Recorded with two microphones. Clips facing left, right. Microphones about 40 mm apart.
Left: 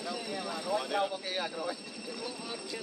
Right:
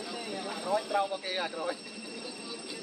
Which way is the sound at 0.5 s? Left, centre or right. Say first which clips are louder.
Right 3 dB; centre.